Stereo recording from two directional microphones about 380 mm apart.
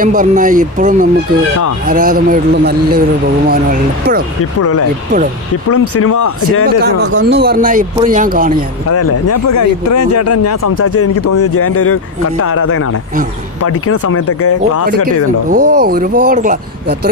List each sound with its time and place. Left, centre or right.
0.0 s speech: right
4.6 s speech: left
6.6 s speech: right
8.9 s speech: left
15.5 s speech: right